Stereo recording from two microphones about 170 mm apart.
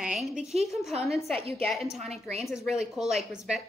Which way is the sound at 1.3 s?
35° right (ahead or behind).